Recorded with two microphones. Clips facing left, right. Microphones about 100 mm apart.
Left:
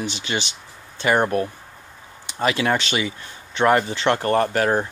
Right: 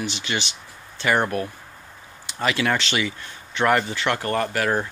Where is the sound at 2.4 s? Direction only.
25° left (ahead or behind).